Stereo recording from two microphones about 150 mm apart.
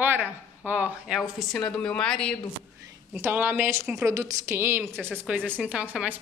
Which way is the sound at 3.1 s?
15° right (ahead or behind).